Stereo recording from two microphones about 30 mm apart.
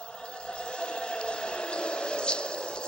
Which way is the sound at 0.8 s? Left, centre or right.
Left.